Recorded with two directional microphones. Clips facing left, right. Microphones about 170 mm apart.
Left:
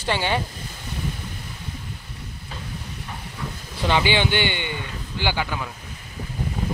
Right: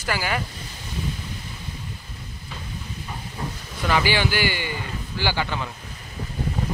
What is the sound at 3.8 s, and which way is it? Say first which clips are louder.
A man's voice: left 1 dB; 20° left (ahead or behind).